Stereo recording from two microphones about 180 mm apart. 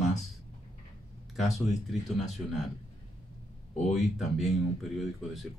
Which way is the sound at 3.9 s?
Centre (ahead or behind).